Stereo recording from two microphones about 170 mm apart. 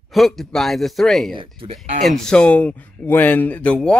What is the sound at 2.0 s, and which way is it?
Speech, centre (ahead or behind).